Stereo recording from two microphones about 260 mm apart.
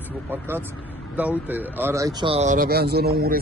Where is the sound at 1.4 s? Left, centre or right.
Centre.